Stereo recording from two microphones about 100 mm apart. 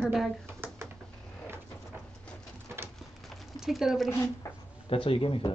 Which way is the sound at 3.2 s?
Centre (ahead or behind).